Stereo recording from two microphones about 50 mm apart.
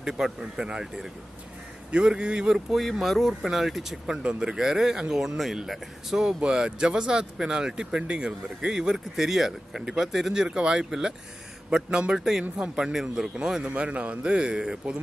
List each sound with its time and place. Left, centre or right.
0.0 s a man's voice: centre
2.5 s speech: centre
4.2 s a man's voice: right
4.6 s a man's voice: centre
13.7 s a man's voice: right